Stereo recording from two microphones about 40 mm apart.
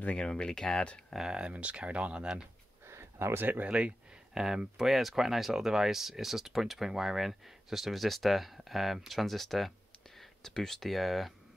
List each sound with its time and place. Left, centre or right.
0.1 s speech: left
1.1 s speech: centre
1.5 s speech: right
3.2 s speech: right
3.6 s speech: right; by 11.3 s centre